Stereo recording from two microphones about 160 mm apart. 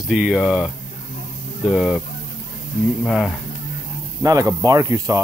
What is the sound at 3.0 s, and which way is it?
Speech, centre (ahead or behind).